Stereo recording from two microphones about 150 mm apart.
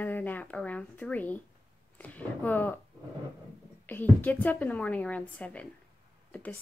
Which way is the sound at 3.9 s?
10° left (ahead or behind).